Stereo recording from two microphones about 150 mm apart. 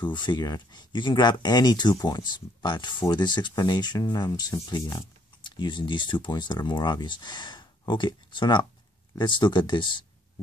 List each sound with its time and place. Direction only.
0.0 s speech: 30° left (ahead or behind)